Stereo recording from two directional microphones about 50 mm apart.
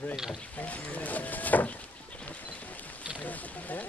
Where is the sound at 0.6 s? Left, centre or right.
Left.